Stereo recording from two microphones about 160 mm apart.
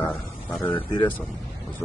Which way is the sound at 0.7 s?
30° left (ahead or behind).